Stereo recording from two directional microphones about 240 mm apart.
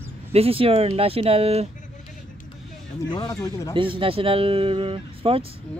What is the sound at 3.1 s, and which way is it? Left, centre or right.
Speech, centre.